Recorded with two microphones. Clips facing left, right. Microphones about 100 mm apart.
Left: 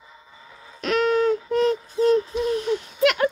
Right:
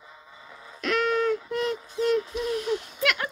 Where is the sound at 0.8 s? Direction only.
25° left (ahead or behind).